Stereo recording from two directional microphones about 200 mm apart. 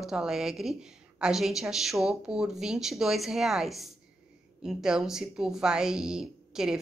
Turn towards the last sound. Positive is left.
turn(degrees=-5)  # may be behind; listen again after turning